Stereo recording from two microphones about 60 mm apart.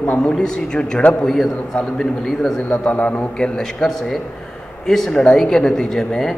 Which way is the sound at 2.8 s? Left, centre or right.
Left.